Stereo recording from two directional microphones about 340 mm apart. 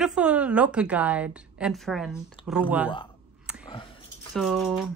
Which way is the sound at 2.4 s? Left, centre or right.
Centre.